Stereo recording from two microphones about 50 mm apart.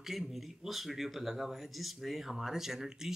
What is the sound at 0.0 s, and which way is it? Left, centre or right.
Speech, centre.